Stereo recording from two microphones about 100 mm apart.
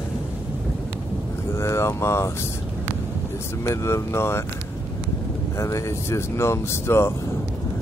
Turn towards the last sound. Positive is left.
turn(degrees=25)  # may be behind; listen again after turning